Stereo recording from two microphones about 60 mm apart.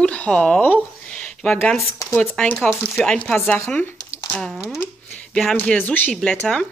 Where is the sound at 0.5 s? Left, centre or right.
Left.